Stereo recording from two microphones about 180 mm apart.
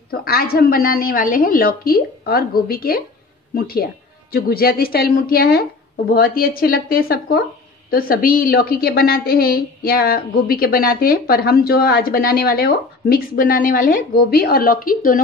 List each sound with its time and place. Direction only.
0.1 s a woman's voice: 55° left (ahead or behind)